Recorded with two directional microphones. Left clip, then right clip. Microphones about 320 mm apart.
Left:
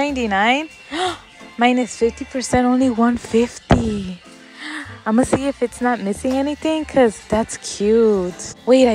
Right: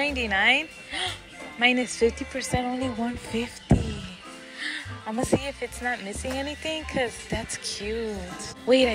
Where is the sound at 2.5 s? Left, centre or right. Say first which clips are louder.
Left 13 dB; left.